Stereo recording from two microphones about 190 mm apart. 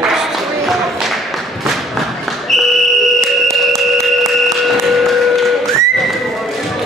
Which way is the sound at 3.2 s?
Centre (ahead or behind).